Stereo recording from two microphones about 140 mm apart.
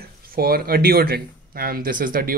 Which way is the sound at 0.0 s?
90° right.